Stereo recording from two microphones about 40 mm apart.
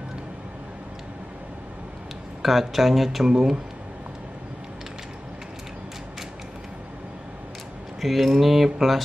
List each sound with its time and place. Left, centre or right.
2.4 s speech: centre
3.3 s speech: centre
8.0 s speech: centre